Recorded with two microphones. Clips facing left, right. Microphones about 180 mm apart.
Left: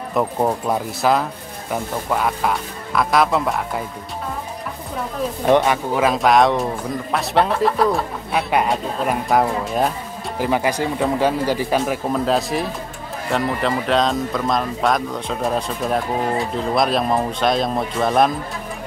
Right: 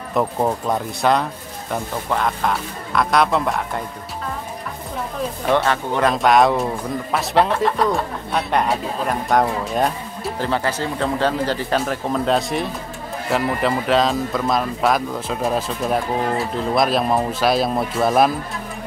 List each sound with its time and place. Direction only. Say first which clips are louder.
0.1 s speech: even; centre (ahead or behind)
5.5 s speech: left 3 dB; 15° left (ahead or behind)
5.9 s speech: even; 5° left (ahead or behind)
10.4 s speech: left 3 dB; 15° left (ahead or behind); by 18.3 s 5° right (ahead or behind)